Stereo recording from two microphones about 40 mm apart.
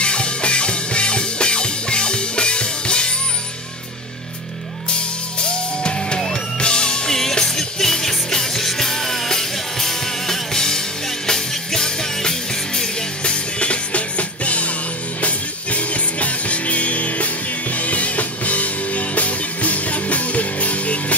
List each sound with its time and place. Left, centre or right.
0.0 s music: left
5.4 s music: left
13.2 s music: left